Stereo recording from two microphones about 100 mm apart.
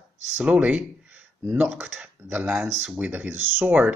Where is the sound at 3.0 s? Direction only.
15° right (ahead or behind).